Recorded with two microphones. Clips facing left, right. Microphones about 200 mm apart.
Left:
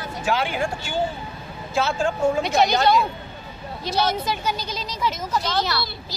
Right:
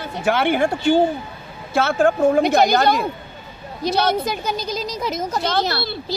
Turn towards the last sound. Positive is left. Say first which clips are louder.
# right 4 dB
turn(degrees=-60)  # may be behind; listen again after turning